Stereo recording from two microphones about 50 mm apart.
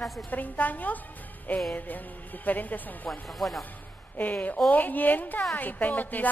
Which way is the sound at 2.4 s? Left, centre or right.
Left.